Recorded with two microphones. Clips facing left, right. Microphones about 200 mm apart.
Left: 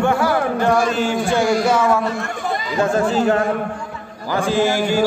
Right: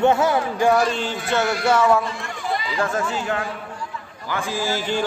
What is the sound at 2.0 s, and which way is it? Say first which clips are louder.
Speech: left 6 dB; 50° left (ahead or behind).